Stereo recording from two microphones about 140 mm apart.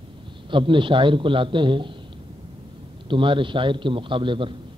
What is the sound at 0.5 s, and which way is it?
A man's voice, 35° right (ahead or behind).